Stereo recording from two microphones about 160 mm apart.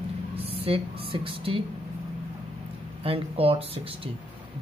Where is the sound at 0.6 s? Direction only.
35° right (ahead or behind).